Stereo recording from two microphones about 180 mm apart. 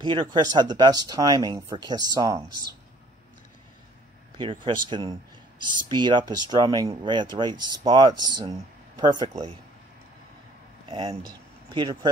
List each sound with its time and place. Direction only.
0.0 s speech: 25° right (ahead or behind)
4.4 s speech: 30° right (ahead or behind)
10.9 s speech: 30° right (ahead or behind)